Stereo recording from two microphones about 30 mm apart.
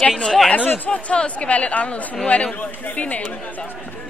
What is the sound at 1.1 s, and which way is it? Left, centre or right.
Speech, left.